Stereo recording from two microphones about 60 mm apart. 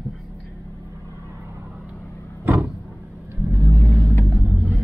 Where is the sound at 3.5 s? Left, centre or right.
Right.